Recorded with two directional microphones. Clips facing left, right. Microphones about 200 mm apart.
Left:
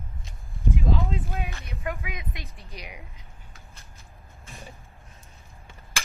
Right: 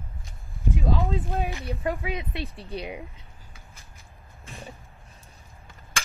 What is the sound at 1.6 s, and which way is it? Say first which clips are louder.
Speech: right 5 dB; 35° right (ahead or behind).